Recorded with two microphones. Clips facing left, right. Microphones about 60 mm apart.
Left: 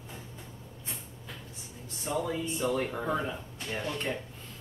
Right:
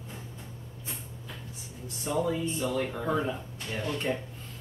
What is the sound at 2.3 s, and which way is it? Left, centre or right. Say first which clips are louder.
Speech: right 1 dB; centre.